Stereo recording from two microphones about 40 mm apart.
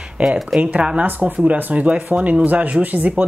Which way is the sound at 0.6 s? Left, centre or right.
Right.